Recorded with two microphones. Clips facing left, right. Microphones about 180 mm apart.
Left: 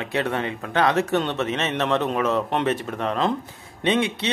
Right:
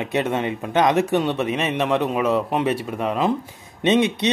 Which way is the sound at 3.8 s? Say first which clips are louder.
Right 4 dB; 20° right (ahead or behind).